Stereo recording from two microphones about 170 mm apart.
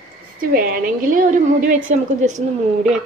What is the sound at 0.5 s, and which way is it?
A woman's voice, 55° right (ahead or behind).